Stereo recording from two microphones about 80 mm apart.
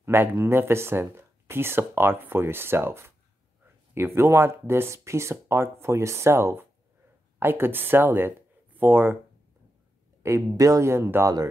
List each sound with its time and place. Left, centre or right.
0.0 s speech: right
10.2 s speech: right